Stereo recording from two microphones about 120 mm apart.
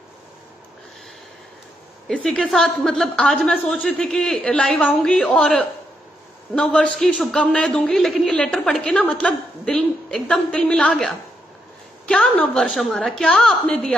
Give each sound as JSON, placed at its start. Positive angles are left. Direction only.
{"t": 2.0, "sound": "a woman's voice", "side_deg": 5}
{"t": 7.1, "sound": "speech", "side_deg": -5}
{"t": 7.3, "sound": "a woman's voice", "side_deg": 10}